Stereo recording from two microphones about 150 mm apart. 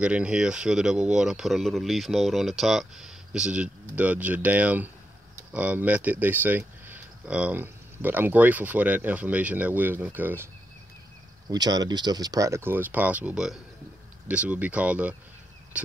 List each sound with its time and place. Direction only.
0.0 s speech: 5° right (ahead or behind)
11.5 s speech: 25° right (ahead or behind); by 15.1 s 10° right (ahead or behind)
15.7 s a sound: 10° right (ahead or behind)